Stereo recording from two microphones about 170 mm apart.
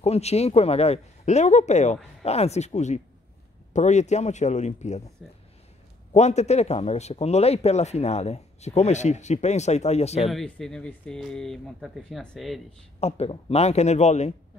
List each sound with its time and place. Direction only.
0.0 s speech: 40° left (ahead or behind)
6.1 s speech: 40° left (ahead or behind)
10.3 s speech: 5° left (ahead or behind)
13.0 s speech: 40° left (ahead or behind)